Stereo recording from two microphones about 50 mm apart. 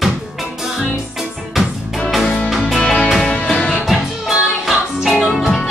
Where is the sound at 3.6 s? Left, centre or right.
Left.